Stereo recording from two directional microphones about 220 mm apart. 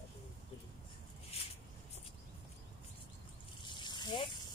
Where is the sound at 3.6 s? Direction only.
20° left (ahead or behind).